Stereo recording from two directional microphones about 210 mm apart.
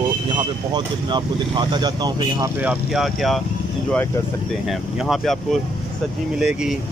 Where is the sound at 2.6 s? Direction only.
5° right (ahead or behind).